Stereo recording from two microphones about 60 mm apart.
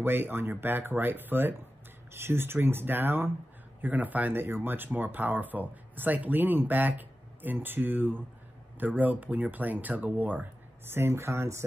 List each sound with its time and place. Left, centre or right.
0.0 s speech: right
10.9 s speech: right